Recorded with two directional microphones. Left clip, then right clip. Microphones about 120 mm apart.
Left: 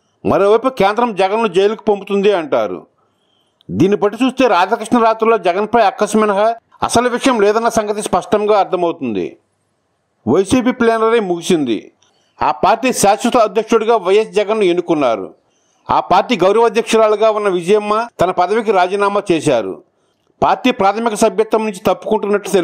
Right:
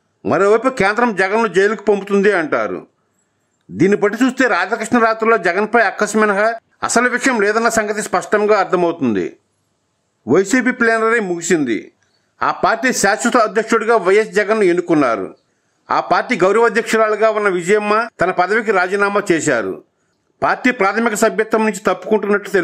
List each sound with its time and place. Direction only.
0.3 s a man's voice: 25° left (ahead or behind)
2.2 s speech: 5° left (ahead or behind)
2.5 s a man's voice: 25° left (ahead or behind)
10.2 s a man's voice: 20° left (ahead or behind)
12.4 s a man's voice: 40° left (ahead or behind)
12.6 s a man's voice: 25° left (ahead or behind)